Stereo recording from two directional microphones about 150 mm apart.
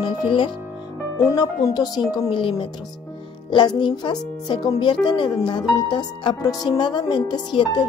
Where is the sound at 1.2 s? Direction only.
20° left (ahead or behind).